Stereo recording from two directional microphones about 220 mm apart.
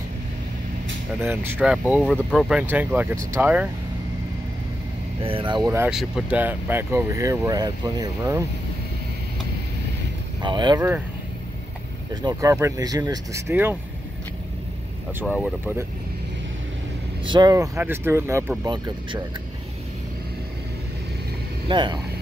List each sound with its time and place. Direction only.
1.2 s speech: 10° right (ahead or behind)
5.2 s speech: 25° right (ahead or behind)
5.7 s speech: 5° right (ahead or behind)
10.4 s speech: 20° right (ahead or behind)
12.1 s speech: 20° right (ahead or behind)
15.1 s speech: 5° right (ahead or behind)
17.3 s speech: 15° right (ahead or behind)
21.6 s speech: 20° right (ahead or behind)